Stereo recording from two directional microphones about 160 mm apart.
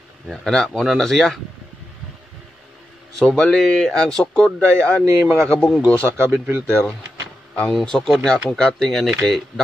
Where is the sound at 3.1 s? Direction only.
5° left (ahead or behind).